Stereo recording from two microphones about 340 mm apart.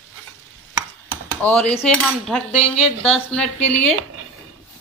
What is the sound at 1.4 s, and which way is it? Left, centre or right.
A woman's voice, centre.